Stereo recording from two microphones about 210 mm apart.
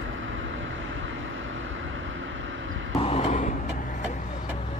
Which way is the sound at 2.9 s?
30° left (ahead or behind).